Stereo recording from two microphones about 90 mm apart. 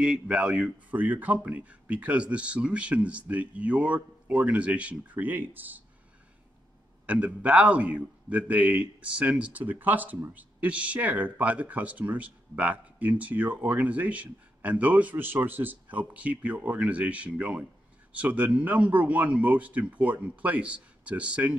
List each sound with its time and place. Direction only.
0.0 s a man's voice: 10° right (ahead or behind)
7.1 s a man's voice: 15° right (ahead or behind)